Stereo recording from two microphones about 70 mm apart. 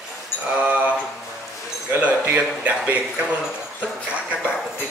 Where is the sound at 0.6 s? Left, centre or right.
Centre.